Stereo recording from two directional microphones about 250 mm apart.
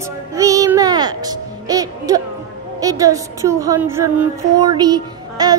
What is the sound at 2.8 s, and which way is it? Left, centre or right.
Music, centre.